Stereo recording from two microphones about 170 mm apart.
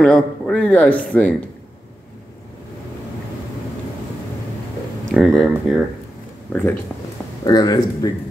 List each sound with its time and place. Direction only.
0.0 s a man's voice: 5° left (ahead or behind)
5.1 s a man's voice: centre (ahead or behind)
6.5 s speech: 10° left (ahead or behind)
7.4 s speech: 20° left (ahead or behind)